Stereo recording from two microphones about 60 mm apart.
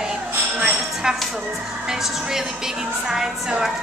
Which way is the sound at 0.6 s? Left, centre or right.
Centre.